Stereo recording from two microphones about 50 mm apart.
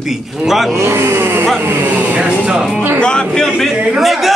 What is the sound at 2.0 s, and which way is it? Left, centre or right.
Speech, right.